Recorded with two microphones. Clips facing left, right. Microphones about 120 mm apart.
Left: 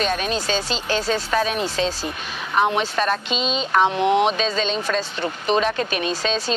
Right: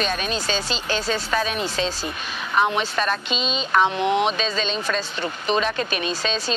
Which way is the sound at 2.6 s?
35° left (ahead or behind).